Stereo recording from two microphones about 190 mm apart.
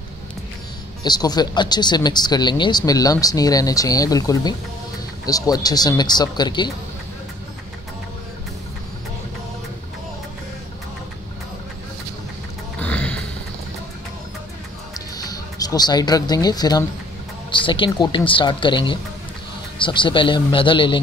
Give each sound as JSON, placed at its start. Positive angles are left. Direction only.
{"t": 1.0, "sound": "speech", "side_deg": 20}
{"t": 12.8, "sound": "music", "side_deg": 5}
{"t": 15.0, "sound": "music", "side_deg": 20}
{"t": 17.5, "sound": "speech", "side_deg": 25}